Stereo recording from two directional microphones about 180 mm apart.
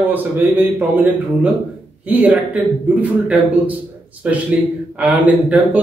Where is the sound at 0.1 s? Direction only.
10° right (ahead or behind).